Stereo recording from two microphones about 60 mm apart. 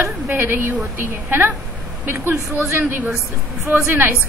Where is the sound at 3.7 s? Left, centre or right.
Right.